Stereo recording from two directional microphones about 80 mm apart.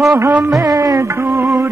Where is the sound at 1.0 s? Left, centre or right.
Right.